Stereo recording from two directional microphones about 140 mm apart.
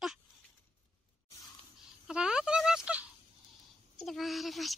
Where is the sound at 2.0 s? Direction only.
5° right (ahead or behind).